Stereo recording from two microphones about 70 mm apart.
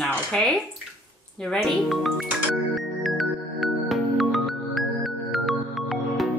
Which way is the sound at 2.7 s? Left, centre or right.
Centre.